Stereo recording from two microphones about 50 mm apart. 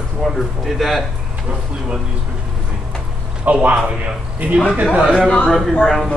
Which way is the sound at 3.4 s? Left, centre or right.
Right.